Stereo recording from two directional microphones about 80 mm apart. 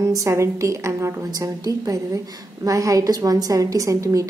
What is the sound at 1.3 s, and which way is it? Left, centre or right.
A woman's voice, right.